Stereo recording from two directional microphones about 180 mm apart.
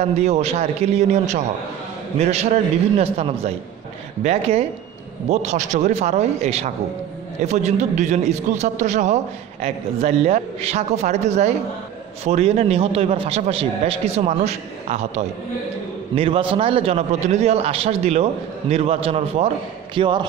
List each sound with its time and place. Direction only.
0.0 s a man's voice: 35° right (ahead or behind)